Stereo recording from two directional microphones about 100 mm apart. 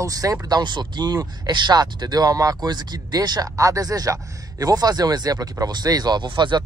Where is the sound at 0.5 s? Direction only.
50° right (ahead or behind).